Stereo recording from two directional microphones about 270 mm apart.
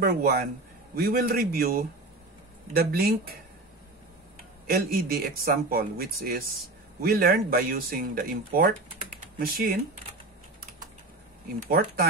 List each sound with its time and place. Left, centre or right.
0.0 s speech: right
4.6 s speech: right
11.6 s speech: right